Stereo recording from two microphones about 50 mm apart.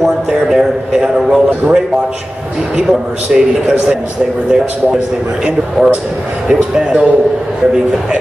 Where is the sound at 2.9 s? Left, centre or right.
Centre.